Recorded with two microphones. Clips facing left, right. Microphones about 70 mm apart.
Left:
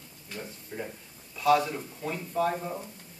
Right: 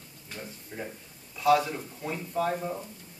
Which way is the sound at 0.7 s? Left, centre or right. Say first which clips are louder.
Left 1 dB; centre.